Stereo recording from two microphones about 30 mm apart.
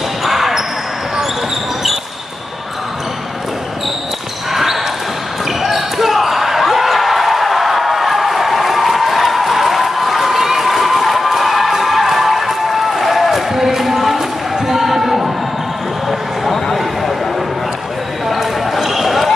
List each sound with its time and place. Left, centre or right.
0.2 s basketball bounce: centre
4.5 s basketball bounce: centre
14.7 s a sound: centre
18.3 s basketball bounce: centre